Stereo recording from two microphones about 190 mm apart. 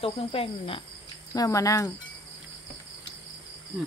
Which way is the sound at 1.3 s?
20° left (ahead or behind).